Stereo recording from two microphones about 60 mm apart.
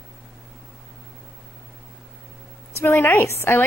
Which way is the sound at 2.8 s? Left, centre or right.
Left.